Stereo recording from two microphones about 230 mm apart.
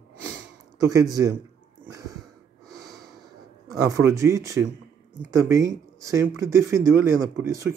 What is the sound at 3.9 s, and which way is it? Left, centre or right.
A man's voice, centre.